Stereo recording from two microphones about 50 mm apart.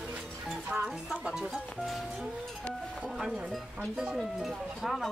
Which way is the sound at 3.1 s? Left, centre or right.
Centre.